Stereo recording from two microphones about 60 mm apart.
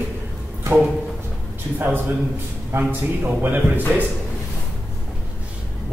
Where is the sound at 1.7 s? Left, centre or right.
Right.